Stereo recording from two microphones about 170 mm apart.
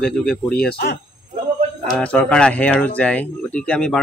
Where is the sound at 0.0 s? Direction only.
5° left (ahead or behind).